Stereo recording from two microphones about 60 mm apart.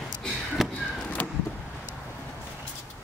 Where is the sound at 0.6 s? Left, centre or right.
Centre.